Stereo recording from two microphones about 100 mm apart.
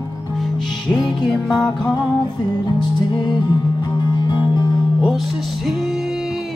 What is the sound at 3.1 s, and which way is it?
Music, 45° left (ahead or behind).